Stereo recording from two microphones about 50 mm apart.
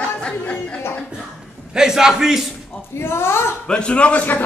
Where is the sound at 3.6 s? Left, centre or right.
Left.